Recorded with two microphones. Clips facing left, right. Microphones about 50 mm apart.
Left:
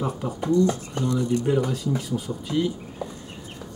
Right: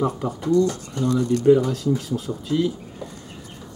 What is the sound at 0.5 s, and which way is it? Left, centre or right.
Speech, right.